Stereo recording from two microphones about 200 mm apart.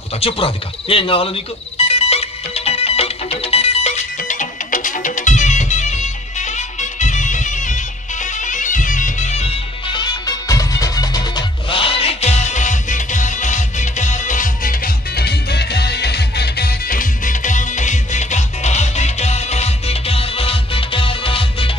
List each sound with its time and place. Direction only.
0.2 s speech: 30° left (ahead or behind)
1.8 s music: 30° left (ahead or behind)